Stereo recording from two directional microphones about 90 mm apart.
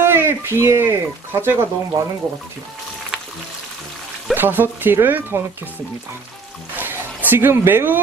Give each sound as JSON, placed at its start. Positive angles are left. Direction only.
{"t": 0.0, "sound": "speech", "side_deg": -25}
{"t": 4.3, "sound": "speech", "side_deg": -20}
{"t": 6.8, "sound": "a sound", "side_deg": -20}